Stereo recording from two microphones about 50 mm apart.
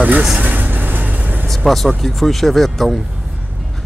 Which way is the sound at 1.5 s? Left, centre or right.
Centre.